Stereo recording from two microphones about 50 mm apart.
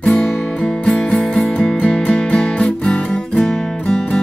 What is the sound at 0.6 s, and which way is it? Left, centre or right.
Music, centre.